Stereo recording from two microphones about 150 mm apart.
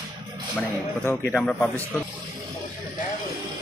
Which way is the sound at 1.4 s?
5° left (ahead or behind).